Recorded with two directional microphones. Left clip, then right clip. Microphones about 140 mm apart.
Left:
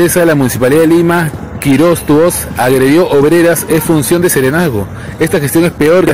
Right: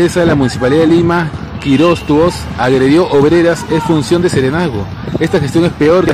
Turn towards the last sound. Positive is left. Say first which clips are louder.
# left 2 dB
turn(degrees=25)  # may be behind; listen again after turning